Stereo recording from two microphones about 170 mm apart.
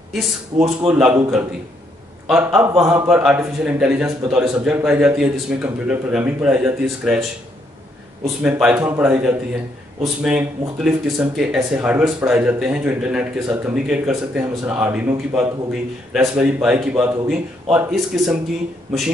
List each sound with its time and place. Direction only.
0.5 s a man's voice: 40° right (ahead or behind)
0.8 s speech: 10° right (ahead or behind)
8.4 s a man's voice: 5° right (ahead or behind)